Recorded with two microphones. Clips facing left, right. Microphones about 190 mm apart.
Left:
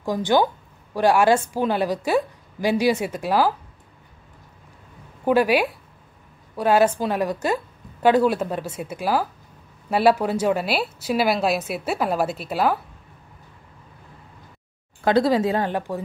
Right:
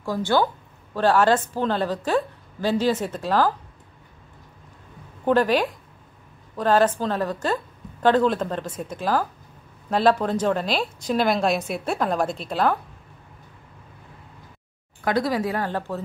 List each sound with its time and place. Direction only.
0.0 s a woman's voice: 15° left (ahead or behind)
5.2 s a woman's voice: 10° left (ahead or behind)
15.0 s a woman's voice: 25° left (ahead or behind)